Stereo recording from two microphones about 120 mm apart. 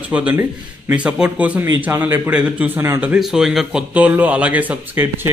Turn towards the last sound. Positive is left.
turn(degrees=-20)  # may be behind; listen again after turning